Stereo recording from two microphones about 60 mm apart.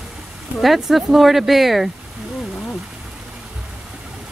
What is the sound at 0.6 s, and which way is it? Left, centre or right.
Speech, centre.